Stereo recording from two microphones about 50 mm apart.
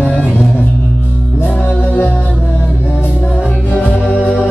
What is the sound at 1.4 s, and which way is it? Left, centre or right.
Music, left.